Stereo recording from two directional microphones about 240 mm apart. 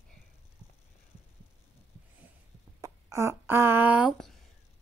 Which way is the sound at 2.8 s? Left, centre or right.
Centre.